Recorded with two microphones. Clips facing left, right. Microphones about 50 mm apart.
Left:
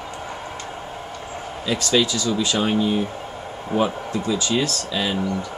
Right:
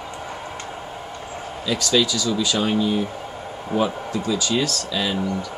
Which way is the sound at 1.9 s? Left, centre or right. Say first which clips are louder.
Even; left.